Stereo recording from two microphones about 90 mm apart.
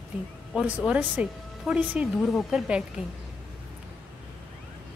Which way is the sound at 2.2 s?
5° left (ahead or behind).